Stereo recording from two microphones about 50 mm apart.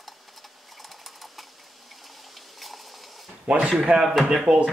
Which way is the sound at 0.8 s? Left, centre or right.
Centre.